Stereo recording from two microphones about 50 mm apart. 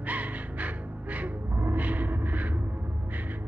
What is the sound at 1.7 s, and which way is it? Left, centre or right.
Gong, right.